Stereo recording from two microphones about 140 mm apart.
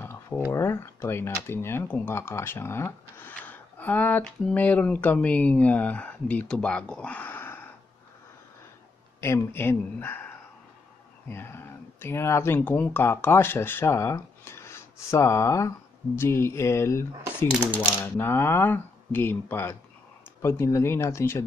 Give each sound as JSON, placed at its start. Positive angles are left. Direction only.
{"t": 0.0, "sound": "a sound", "side_deg": 15}
{"t": 0.5, "sound": "speech", "side_deg": 20}
{"t": 9.2, "sound": "speech", "side_deg": 15}
{"t": 18.0, "sound": "speech", "side_deg": 15}